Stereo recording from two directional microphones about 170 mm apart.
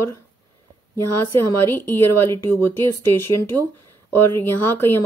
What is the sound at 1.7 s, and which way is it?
Speech, 15° left (ahead or behind).